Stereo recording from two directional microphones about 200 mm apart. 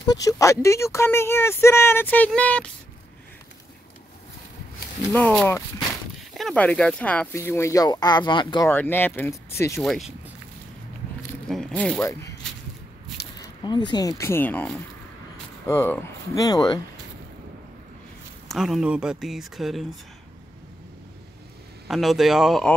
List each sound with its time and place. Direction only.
0.0 s speech: 20° left (ahead or behind)
5.1 s speech: 5° left (ahead or behind); by 8.6 s 25° left (ahead or behind)
8.6 s speech: 10° left (ahead or behind)
9.8 s speech: centre (ahead or behind)
11.4 s speech: 5° left (ahead or behind)
13.4 s speech: 20° left (ahead or behind)
18.5 s speech: centre (ahead or behind)
21.8 s speech: centre (ahead or behind)